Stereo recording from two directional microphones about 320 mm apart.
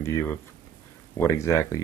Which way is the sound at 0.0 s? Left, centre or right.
Centre.